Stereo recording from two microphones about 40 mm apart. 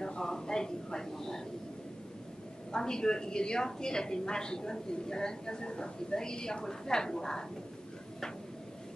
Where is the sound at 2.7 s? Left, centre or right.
Centre.